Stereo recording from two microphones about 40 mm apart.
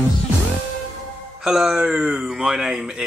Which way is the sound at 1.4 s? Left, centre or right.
Centre.